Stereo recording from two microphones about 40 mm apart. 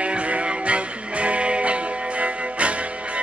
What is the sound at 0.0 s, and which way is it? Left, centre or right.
Music, right.